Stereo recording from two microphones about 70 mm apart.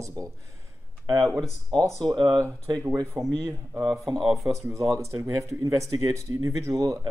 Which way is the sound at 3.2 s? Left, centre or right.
Right.